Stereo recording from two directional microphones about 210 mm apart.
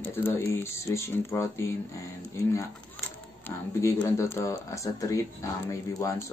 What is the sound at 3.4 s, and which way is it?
Speech, 15° left (ahead or behind).